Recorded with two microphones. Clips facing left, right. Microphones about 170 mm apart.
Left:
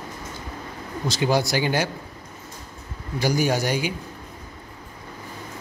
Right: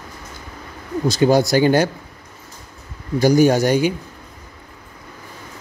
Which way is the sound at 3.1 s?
45° right (ahead or behind).